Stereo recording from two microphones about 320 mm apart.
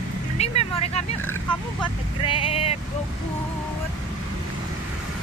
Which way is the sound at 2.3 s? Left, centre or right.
Centre.